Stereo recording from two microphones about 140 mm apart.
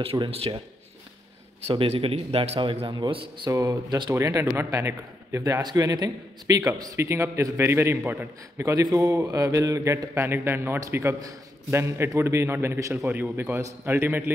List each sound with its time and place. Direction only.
0.0 s speech: 40° right (ahead or behind)
1.7 s a man's voice: 40° right (ahead or behind); by 14.3 s 15° right (ahead or behind)